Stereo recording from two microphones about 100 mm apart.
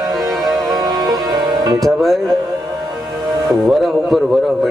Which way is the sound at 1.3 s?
45° right (ahead or behind).